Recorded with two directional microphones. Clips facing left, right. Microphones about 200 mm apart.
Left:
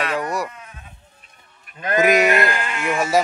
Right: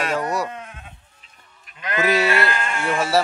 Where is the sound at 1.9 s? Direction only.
15° left (ahead or behind).